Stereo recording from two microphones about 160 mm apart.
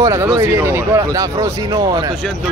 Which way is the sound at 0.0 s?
20° right (ahead or behind).